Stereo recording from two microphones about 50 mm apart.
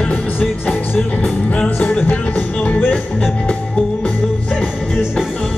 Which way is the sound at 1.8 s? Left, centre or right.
Left.